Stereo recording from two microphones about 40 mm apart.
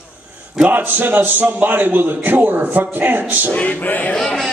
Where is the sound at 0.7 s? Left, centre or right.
Right.